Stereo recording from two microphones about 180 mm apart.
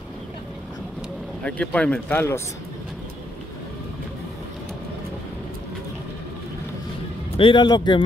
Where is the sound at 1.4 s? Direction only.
5° left (ahead or behind).